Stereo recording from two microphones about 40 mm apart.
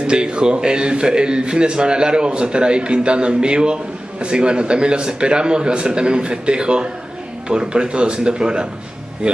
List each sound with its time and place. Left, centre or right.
0.0 s a man's voice: right